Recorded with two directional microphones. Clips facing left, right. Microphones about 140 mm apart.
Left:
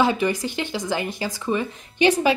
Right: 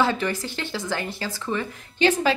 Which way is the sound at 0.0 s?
15° left (ahead or behind).